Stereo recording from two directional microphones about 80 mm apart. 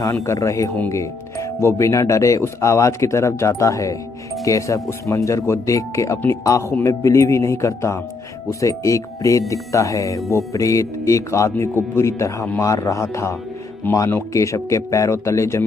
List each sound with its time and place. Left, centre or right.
0.0 s speech: left
13.9 s speech: left
14.3 s speech: left